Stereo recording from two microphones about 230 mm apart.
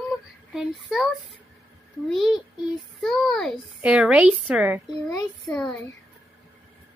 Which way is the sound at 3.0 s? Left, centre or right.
Centre.